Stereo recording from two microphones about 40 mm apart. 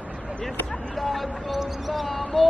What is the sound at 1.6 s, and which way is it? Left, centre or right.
Music, centre.